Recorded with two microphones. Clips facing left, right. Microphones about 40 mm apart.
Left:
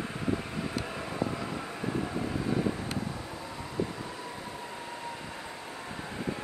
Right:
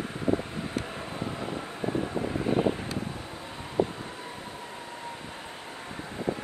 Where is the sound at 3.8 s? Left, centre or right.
Right.